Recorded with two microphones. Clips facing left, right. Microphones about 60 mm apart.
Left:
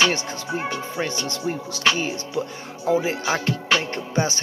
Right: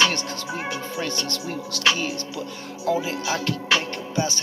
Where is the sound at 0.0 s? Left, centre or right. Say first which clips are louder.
Left 1 dB; centre.